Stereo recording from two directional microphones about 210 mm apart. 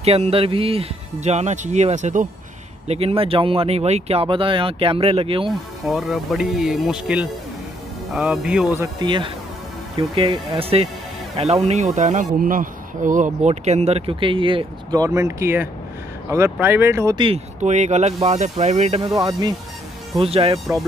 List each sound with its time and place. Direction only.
0.0 s speech: 30° right (ahead or behind)
5.9 s speech: centre (ahead or behind)
8.7 s speech: 15° right (ahead or behind)
17.6 s speech: 35° right (ahead or behind)
19.0 s speech: 15° right (ahead or behind)
20.2 s speech: 30° right (ahead or behind)